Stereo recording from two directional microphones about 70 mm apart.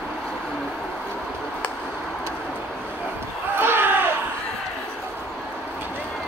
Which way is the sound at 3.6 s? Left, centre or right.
Right.